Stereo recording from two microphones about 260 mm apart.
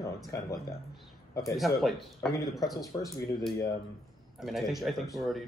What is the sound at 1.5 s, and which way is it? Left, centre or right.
A man's voice, centre.